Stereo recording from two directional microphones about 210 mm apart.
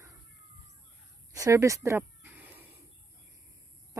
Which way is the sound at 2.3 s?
5° right (ahead or behind).